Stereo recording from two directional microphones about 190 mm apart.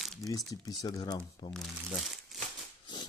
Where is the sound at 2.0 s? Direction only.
Centre (ahead or behind).